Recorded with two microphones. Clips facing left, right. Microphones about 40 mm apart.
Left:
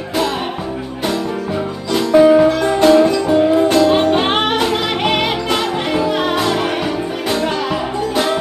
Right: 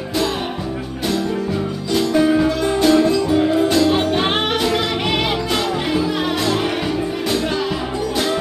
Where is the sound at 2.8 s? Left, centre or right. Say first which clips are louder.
Left 4 dB; centre.